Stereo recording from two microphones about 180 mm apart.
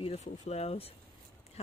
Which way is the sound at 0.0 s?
35° left (ahead or behind).